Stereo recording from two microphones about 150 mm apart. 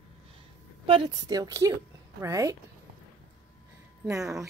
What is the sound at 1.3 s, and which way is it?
A woman's voice, 20° right (ahead or behind).